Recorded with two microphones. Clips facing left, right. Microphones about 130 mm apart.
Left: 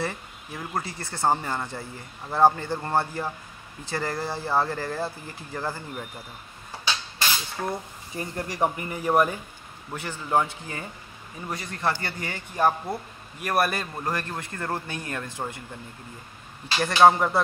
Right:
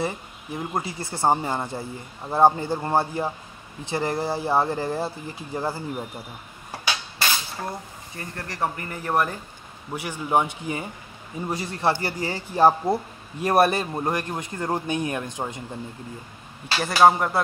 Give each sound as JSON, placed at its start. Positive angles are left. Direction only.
{"t": 0.1, "sound": "speech", "side_deg": -15}
{"t": 7.6, "sound": "speech", "side_deg": 20}
{"t": 9.9, "sound": "a man's voice", "side_deg": -15}
{"t": 11.4, "sound": "speech", "side_deg": -30}
{"t": 16.8, "sound": "speech", "side_deg": -5}